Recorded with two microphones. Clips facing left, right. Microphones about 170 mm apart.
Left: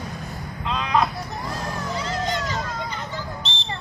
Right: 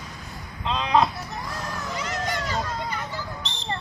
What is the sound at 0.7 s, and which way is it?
Speech, 25° right (ahead or behind).